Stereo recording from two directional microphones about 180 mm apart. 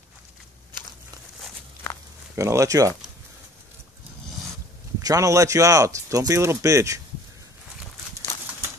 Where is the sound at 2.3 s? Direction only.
15° right (ahead or behind).